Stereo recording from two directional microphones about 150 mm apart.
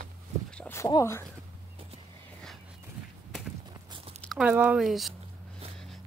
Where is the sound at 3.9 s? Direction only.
40° right (ahead or behind).